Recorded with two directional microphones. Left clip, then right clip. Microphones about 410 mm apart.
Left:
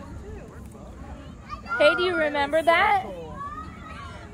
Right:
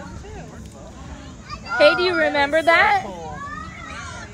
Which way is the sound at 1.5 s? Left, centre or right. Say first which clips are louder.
Right 5 dB; right.